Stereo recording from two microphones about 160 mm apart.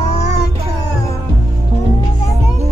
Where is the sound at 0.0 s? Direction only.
45° left (ahead or behind).